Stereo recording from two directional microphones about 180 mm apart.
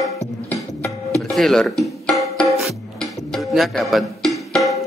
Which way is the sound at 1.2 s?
Centre (ahead or behind).